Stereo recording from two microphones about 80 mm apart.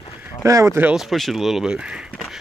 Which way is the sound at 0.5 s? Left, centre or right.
Right.